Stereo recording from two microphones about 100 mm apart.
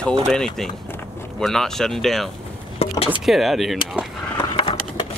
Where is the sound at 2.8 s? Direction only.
90° left.